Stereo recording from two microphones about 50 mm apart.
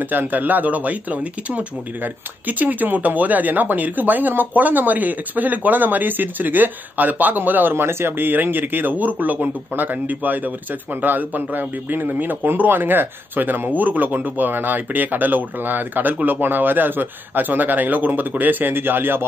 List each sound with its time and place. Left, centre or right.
0.0 s speech: right
7.7 s speech: right